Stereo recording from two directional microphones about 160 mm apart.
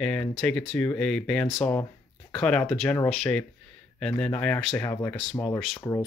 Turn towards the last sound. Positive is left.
turn(degrees=20)  # may be behind; listen again after turning